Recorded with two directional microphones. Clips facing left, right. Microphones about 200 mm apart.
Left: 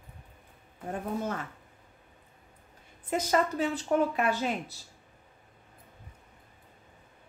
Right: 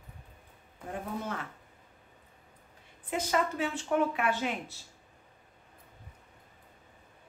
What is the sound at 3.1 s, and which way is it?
A woman's voice, 40° left (ahead or behind).